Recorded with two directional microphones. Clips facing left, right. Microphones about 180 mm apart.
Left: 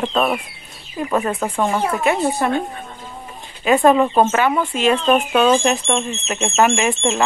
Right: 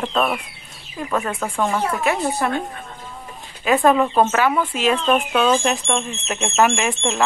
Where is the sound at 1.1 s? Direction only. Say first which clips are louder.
Left 3 dB; 20° left (ahead or behind).